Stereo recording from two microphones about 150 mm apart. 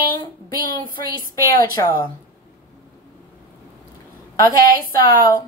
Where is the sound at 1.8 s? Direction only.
25° left (ahead or behind).